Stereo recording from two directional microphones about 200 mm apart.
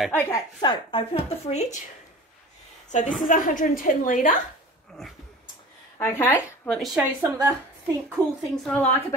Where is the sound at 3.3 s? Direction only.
40° left (ahead or behind).